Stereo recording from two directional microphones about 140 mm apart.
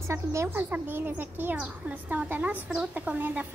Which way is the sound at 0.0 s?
20° right (ahead or behind).